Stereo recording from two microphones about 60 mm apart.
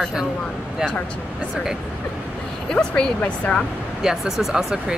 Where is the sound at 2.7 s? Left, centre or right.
Centre.